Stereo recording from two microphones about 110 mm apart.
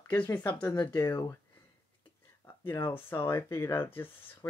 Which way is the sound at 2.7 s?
25° left (ahead or behind).